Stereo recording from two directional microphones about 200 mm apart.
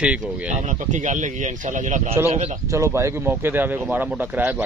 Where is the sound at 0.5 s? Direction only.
35° right (ahead or behind).